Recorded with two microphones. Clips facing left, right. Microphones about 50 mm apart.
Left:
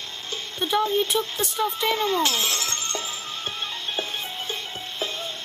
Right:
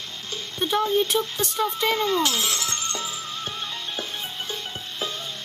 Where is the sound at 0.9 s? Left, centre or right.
Centre.